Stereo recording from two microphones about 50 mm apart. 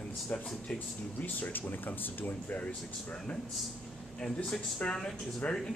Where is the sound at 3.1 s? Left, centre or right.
Centre.